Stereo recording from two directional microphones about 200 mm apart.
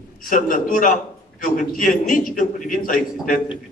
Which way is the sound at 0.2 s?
45° left (ahead or behind).